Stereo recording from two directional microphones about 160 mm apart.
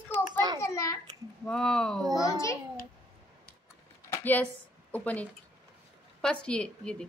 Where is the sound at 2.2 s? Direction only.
20° left (ahead or behind).